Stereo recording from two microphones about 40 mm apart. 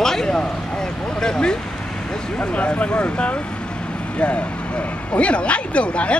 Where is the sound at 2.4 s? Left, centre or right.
Left.